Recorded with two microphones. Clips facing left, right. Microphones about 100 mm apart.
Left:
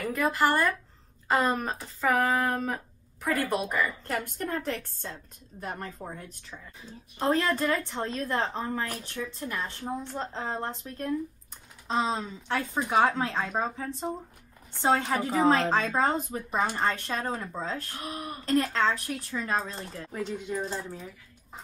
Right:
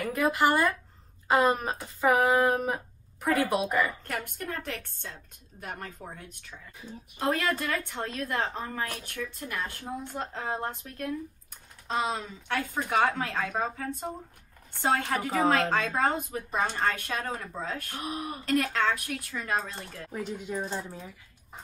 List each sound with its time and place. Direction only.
0.0 s speech: 5° right (ahead or behind)
4.1 s a woman's voice: 35° left (ahead or behind)
17.9 s speech: 15° right (ahead or behind)
18.4 s a woman's voice: 30° left (ahead or behind)
20.1 s speech: 5° right (ahead or behind)